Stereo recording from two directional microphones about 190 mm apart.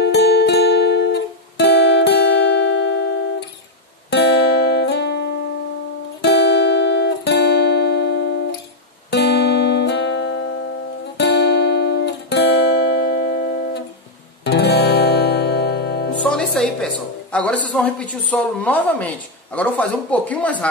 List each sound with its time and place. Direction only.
0.0 s music: 60° left (ahead or behind); by 10.4 s 80° left
11.1 s music: 60° left (ahead or behind)
16.2 s a woman's voice: 5° left (ahead or behind)